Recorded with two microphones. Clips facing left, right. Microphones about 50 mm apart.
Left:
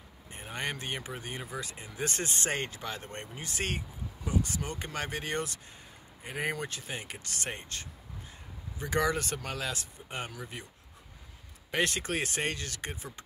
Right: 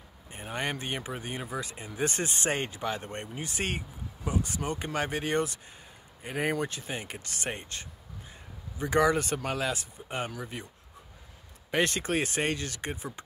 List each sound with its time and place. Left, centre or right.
0.3 s speech: centre
11.7 s speech: centre
12.9 s speech: centre